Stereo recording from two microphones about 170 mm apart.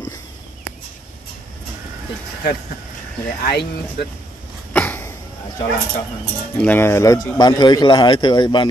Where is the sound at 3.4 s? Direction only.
65° left (ahead or behind).